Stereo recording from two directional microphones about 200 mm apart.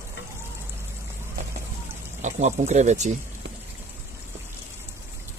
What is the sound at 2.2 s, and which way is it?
Speech, 35° right (ahead or behind).